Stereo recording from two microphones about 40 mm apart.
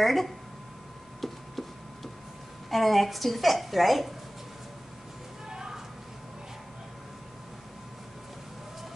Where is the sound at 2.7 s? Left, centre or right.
Centre.